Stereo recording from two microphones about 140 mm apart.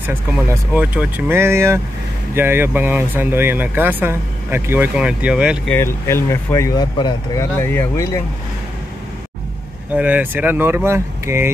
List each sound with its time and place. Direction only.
0.7 s speech: 10° right (ahead or behind)
5.7 s speech: 20° left (ahead or behind)
9.9 s speech: 10° right (ahead or behind)